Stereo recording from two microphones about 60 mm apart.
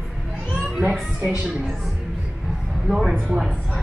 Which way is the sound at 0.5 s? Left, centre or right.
Centre.